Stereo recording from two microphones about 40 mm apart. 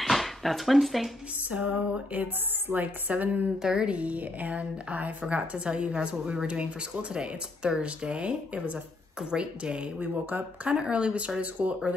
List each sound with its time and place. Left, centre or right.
0.0 s dishes: centre
1.5 s speech: right
2.1 s a woman's voice: right
3.6 s speech: centre
3.9 s a woman's voice: right